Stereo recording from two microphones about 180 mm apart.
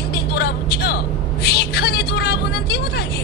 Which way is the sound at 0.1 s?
65° left (ahead or behind).